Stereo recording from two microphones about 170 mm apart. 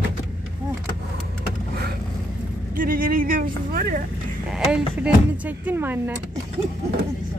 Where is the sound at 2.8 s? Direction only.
55° right (ahead or behind).